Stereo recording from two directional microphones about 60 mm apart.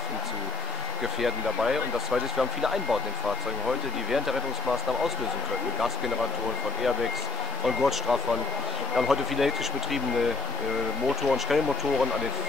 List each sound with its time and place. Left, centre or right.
1.2 s speech: centre
7.6 s speech: centre
11.2 s speech: centre